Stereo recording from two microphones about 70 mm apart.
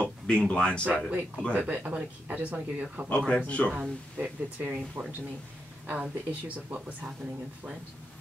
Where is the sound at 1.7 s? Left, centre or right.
Centre.